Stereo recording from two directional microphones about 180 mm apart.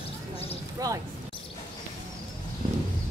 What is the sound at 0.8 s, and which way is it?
Speech, 20° right (ahead or behind).